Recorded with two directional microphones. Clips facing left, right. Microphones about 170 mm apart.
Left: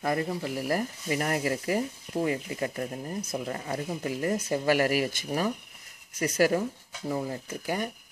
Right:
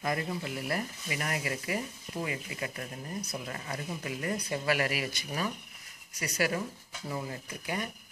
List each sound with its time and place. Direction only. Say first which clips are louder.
0.0 s speech: left 4 dB; 35° left (ahead or behind)
3.4 s speech: left 6 dB; 35° left (ahead or behind)